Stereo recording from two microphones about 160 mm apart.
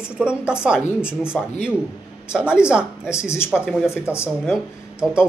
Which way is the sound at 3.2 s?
15° left (ahead or behind).